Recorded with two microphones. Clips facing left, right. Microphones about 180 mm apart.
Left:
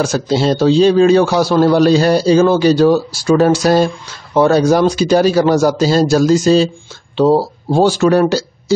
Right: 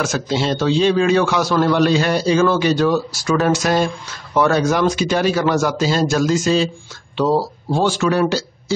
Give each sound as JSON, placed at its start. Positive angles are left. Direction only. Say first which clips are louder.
{"t": 0.0, "sound": "a man's voice", "louder": "left 5 dB", "side_deg": 35}